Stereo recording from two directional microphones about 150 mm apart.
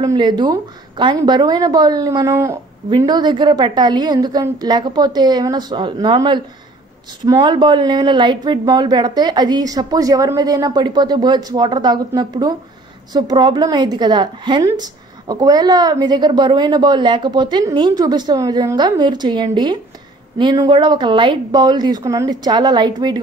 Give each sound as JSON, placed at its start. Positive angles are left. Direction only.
{"t": 0.0, "sound": "speech", "side_deg": -25}